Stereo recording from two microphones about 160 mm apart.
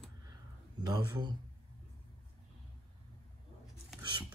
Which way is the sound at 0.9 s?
25° right (ahead or behind).